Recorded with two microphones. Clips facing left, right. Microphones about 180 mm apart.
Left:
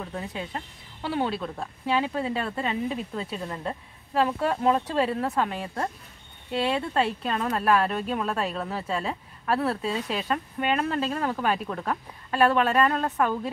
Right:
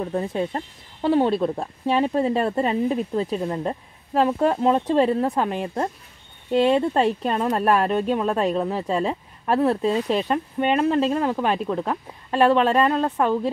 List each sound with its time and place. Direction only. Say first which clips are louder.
0.0 s speech: right 9 dB; 40° right (ahead or behind)
3.3 s a woman's voice: right 7 dB; 30° right (ahead or behind)
8.8 s speech: right 6 dB; 35° right (ahead or behind)
9.5 s a woman's voice: right 6 dB; 20° right (ahead or behind)
9.8 s speech: right 8 dB; 35° right (ahead or behind)
11.1 s a woman's voice: right 4 dB; 20° right (ahead or behind)